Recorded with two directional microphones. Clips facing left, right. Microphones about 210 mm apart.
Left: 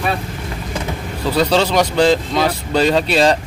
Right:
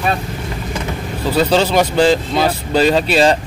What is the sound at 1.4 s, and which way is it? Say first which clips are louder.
Speech: right 1 dB; 5° right (ahead or behind).